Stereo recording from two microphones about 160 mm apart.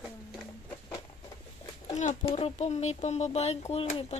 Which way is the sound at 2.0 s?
45° left (ahead or behind).